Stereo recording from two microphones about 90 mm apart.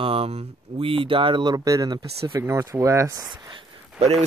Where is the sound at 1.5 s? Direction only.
40° right (ahead or behind).